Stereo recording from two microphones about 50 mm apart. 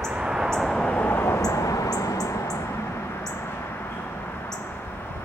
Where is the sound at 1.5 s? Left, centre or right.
Left.